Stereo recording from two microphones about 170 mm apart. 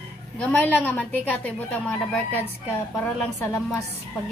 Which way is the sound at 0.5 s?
10° left (ahead or behind).